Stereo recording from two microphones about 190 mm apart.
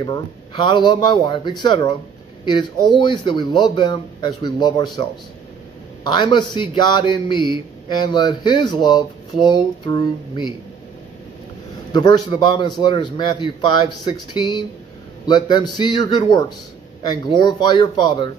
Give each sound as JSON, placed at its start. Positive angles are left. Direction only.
{"t": 0.0, "sound": "a man's voice", "side_deg": 25}
{"t": 6.0, "sound": "a man's voice", "side_deg": 25}
{"t": 11.9, "sound": "a man's voice", "side_deg": 20}